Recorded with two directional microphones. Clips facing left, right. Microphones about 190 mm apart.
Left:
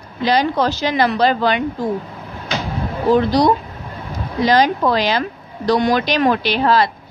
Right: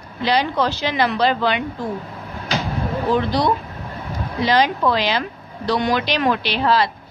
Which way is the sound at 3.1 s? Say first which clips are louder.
Left 6 dB; 40° left (ahead or behind).